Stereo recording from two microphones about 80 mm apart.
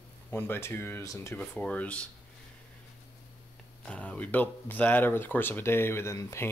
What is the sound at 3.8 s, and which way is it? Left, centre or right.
Speech, centre.